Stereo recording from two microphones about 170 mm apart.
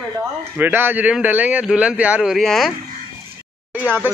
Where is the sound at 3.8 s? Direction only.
10° right (ahead or behind).